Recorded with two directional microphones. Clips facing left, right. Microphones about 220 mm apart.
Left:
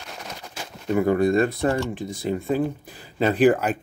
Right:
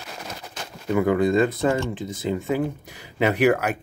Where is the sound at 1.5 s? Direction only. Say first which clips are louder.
Right 1 dB; 20° right (ahead or behind).